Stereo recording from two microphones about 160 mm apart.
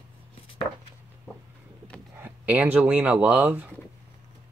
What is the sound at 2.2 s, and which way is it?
Speech, 10° right (ahead or behind).